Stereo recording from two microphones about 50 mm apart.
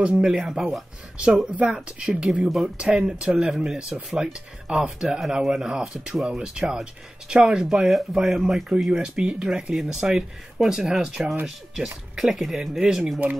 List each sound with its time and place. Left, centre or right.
0.0 s speech: centre